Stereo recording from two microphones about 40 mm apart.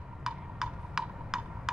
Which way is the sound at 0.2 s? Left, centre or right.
Centre.